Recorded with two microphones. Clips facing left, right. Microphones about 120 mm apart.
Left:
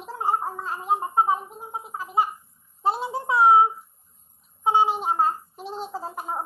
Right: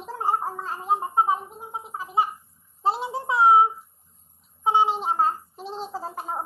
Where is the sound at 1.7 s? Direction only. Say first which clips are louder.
Even; 20° right (ahead or behind).